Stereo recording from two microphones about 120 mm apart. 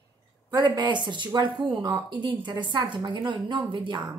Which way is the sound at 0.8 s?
40° right (ahead or behind).